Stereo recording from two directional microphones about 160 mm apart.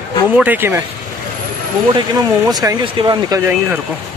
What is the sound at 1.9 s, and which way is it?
Speech, 25° right (ahead or behind).